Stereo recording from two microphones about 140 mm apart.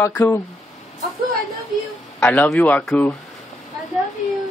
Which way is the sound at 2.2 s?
5° left (ahead or behind).